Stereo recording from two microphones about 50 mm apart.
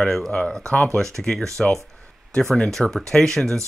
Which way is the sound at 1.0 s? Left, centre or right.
Centre.